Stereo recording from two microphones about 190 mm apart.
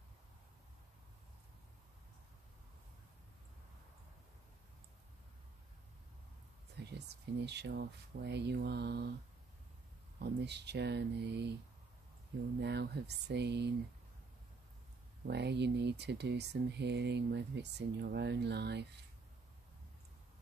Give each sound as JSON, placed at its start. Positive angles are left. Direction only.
{"t": 6.8, "sound": "a sound", "side_deg": -60}
{"t": 7.4, "sound": "speech", "side_deg": -60}
{"t": 10.1, "sound": "speech", "side_deg": -60}
{"t": 12.5, "sound": "speech", "side_deg": -60}
{"t": 15.2, "sound": "speech", "side_deg": -60}